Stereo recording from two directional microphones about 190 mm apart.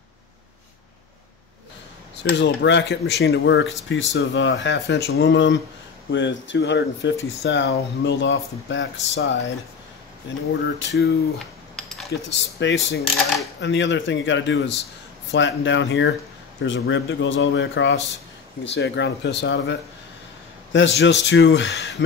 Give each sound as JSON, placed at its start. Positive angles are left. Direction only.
{"t": 2.2, "sound": "speech", "side_deg": 65}
{"t": 10.8, "sound": "speech", "side_deg": 65}
{"t": 11.3, "sound": "cutlery", "side_deg": 0}
{"t": 12.3, "sound": "speech", "side_deg": 70}